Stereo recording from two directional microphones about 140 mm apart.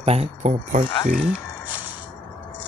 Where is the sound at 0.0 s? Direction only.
50° right (ahead or behind).